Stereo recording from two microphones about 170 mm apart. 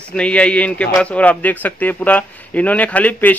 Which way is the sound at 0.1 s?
5° left (ahead or behind).